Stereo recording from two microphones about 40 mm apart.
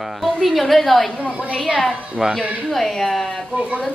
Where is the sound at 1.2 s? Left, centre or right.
Right.